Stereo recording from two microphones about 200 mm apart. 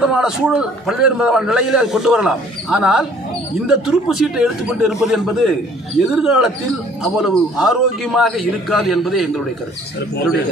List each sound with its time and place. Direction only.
0.0 s a man's voice: 5° right (ahead or behind)